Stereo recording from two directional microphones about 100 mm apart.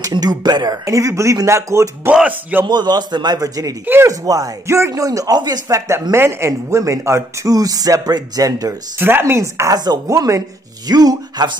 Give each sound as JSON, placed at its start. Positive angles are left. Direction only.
{"t": 0.0, "sound": "a man's voice", "side_deg": -40}
{"t": 2.0, "sound": "speech", "side_deg": -15}
{"t": 2.6, "sound": "a man's voice", "side_deg": -45}
{"t": 3.8, "sound": "speech", "side_deg": -20}
{"t": 4.1, "sound": "a man's voice", "side_deg": -35}
{"t": 8.9, "sound": "a man's voice", "side_deg": -20}